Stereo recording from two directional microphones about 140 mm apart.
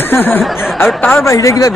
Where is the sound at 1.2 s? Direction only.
20° left (ahead or behind).